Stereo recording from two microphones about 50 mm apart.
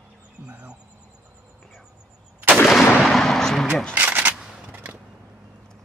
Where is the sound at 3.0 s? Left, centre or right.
Centre.